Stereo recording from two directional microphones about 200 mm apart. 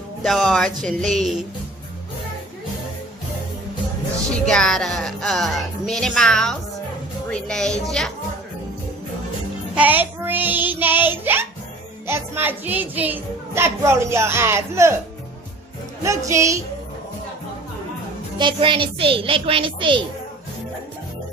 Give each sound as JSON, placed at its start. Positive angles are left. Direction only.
{"t": 0.2, "sound": "speech", "side_deg": 0}
{"t": 4.5, "sound": "speech", "side_deg": 5}
{"t": 9.8, "sound": "a child's voice", "side_deg": -10}
{"t": 16.0, "sound": "a child's voice", "side_deg": -15}
{"t": 18.4, "sound": "a child's voice", "side_deg": -25}